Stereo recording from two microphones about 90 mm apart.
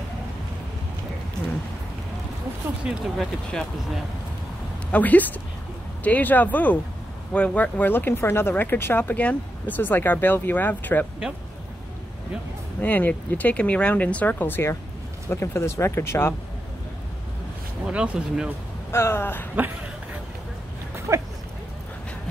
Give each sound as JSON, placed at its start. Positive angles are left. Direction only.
{"t": 2.8, "sound": "speech", "side_deg": -10}
{"t": 4.9, "sound": "speech", "side_deg": 20}
{"t": 12.8, "sound": "speech", "side_deg": 20}
{"t": 17.9, "sound": "speech", "side_deg": -10}
{"t": 18.9, "sound": "speech", "side_deg": 30}
{"t": 21.1, "sound": "a sound", "side_deg": -35}